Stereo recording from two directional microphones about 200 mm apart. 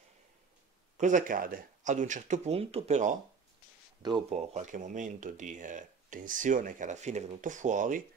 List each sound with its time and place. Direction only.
0.9 s speech: 40° right (ahead or behind)
4.0 s speech: 25° right (ahead or behind)
4.4 s speech: 35° right (ahead or behind)